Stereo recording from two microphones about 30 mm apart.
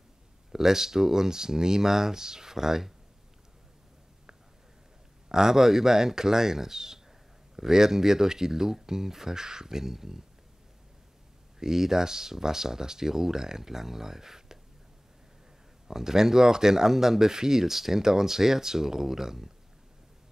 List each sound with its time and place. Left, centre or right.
0.5 s speech: centre
5.3 s speech: centre
11.6 s speech: centre
15.9 s speech: centre